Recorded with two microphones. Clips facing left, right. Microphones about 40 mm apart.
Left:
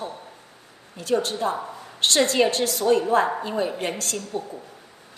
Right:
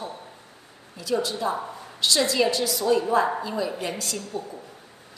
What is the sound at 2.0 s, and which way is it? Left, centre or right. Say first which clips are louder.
A woman's voice: left 2 dB; left.